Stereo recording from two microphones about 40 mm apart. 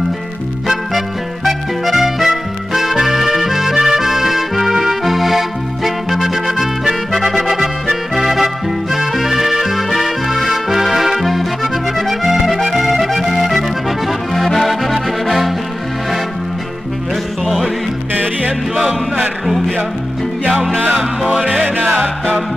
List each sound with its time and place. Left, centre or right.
0.7 s music: centre
8.9 s accordion: centre
18.1 s music: right
20.9 s music: centre
21.6 s music: right